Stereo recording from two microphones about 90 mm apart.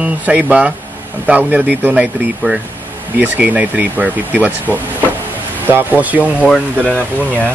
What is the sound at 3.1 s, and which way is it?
Speech, 20° right (ahead or behind).